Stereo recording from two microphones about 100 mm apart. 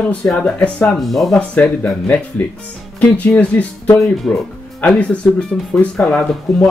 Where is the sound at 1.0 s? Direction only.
Centre (ahead or behind).